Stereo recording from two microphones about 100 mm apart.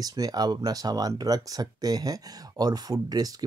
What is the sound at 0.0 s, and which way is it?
Speech, 40° right (ahead or behind).